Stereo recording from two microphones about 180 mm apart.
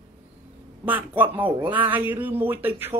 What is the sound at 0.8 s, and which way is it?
Speech, 10° right (ahead or behind).